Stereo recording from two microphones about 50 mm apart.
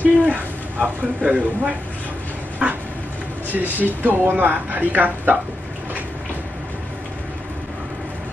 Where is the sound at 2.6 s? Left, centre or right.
Right.